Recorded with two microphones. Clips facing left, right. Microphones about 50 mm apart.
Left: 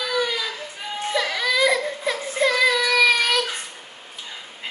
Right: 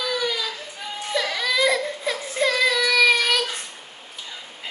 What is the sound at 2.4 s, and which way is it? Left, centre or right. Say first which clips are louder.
Child singing: left 1 dB; centre.